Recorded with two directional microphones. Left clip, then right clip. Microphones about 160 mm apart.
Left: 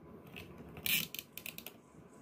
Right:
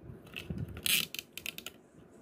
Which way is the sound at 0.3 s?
25° right (ahead or behind).